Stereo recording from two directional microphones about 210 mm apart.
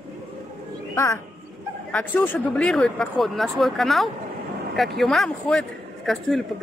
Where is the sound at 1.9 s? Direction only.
5° left (ahead or behind).